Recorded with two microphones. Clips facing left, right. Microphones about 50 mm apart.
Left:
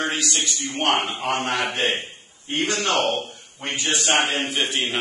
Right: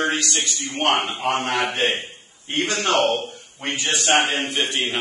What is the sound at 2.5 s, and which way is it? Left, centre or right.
A man's voice, centre.